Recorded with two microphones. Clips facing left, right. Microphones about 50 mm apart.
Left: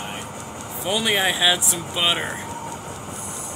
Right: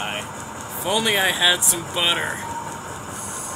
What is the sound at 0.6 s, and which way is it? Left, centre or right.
Speech, centre.